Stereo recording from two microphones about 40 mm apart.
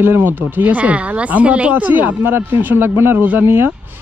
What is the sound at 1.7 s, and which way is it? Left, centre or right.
Speech, right.